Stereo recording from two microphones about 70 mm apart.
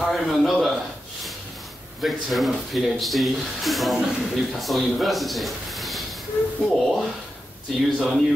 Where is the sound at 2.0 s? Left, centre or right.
Centre.